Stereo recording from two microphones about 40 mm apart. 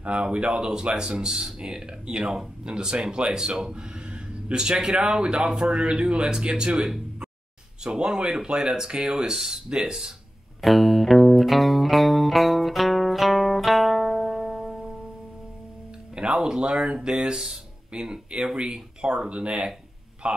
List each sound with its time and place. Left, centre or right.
0.0 s speech: right
10.6 s music: centre
16.2 s speech: centre